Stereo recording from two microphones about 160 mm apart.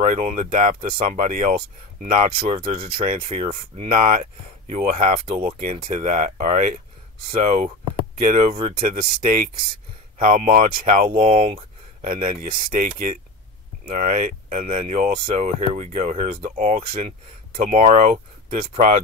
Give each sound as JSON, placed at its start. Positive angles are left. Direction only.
{"t": 0.0, "sound": "speech", "side_deg": -50}
{"t": 3.9, "sound": "speech", "side_deg": -55}
{"t": 11.1, "sound": "speech", "side_deg": -40}
{"t": 12.0, "sound": "speech", "side_deg": -55}